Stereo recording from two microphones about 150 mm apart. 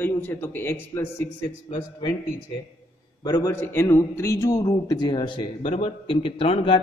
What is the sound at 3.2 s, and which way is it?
A man's voice, 25° left (ahead or behind).